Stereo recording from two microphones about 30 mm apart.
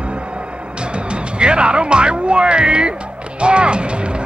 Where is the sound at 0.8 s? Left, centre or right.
Right.